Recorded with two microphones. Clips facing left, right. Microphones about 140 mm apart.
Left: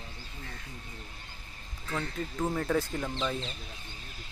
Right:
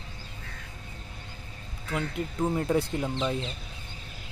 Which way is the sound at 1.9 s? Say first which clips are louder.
Right 3 dB; 10° right (ahead or behind).